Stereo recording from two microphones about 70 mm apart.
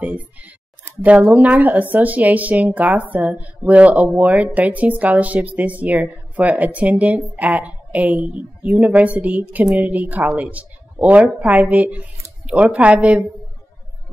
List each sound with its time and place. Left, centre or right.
0.0 s a woman's voice: right